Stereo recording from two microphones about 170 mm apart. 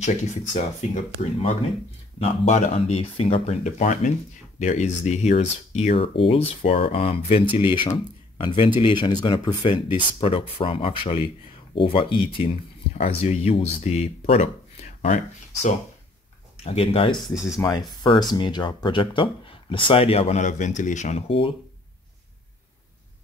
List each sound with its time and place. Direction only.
0.0 s speech: 45° left (ahead or behind)
2.1 s speech: 40° left (ahead or behind)
17.2 s speech: 5° right (ahead or behind)
17.6 s speech: 25° left (ahead or behind)